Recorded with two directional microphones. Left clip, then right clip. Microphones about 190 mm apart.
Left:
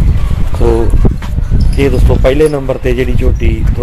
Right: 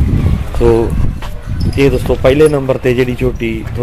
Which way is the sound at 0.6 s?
15° right (ahead or behind).